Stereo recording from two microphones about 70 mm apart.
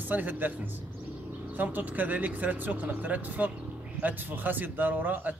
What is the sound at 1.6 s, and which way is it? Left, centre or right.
Speech, right.